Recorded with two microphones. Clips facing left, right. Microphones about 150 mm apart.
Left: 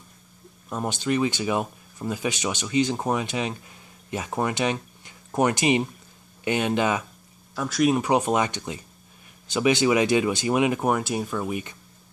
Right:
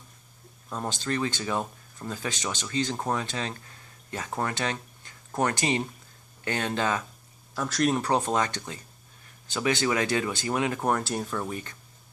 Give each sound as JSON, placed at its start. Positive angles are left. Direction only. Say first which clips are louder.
{"t": 0.7, "sound": "speech", "louder": "left 5 dB", "side_deg": 15}
{"t": 7.5, "sound": "speech", "louder": "left 4 dB", "side_deg": 5}